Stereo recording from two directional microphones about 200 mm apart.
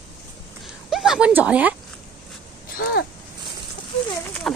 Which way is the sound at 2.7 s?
50° left (ahead or behind).